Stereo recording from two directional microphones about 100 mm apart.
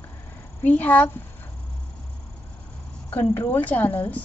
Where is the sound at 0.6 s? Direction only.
15° left (ahead or behind).